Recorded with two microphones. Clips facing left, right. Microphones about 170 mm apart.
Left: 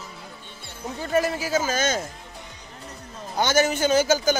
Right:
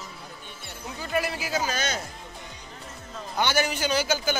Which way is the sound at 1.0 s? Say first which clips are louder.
Left 5 dB; 40° left (ahead or behind).